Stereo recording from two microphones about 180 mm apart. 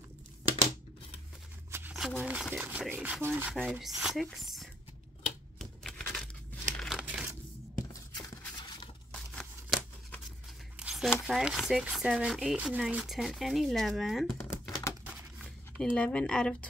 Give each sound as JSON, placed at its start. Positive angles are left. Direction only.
{"t": 1.7, "sound": "speech", "side_deg": -10}
{"t": 5.6, "sound": "typewriter", "side_deg": 5}
{"t": 6.8, "sound": "crumpling", "side_deg": -5}
{"t": 9.1, "sound": "a sound", "side_deg": 5}
{"t": 11.2, "sound": "speech", "side_deg": 0}
{"t": 15.8, "sound": "speech", "side_deg": 5}